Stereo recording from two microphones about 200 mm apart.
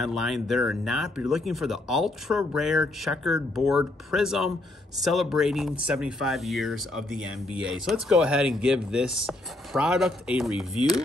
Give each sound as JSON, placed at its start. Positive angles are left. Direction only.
{"t": 0.0, "sound": "speech", "side_deg": 0}